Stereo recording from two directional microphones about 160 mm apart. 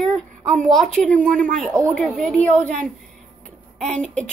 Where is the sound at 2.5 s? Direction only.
50° right (ahead or behind).